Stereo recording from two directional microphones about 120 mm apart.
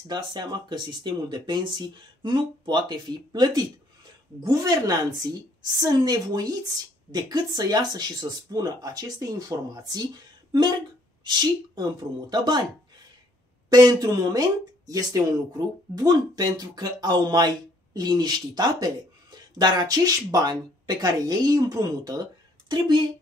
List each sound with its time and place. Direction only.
0.1 s speech: 35° right (ahead or behind)
13.7 s speech: 30° right (ahead or behind)